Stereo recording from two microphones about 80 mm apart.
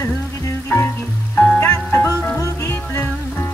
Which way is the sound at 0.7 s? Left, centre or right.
Left.